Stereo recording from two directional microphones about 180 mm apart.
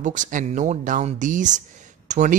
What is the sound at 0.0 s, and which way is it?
A man's voice, 45° right (ahead or behind).